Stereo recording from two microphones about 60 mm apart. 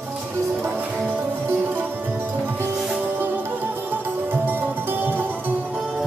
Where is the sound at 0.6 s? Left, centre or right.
Right.